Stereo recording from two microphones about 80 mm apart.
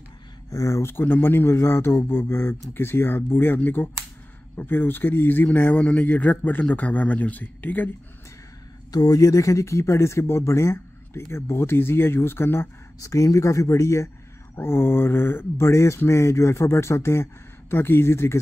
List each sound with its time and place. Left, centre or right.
0.5 s speech: left
8.9 s speech: left
13.0 s speech: left
14.6 s speech: left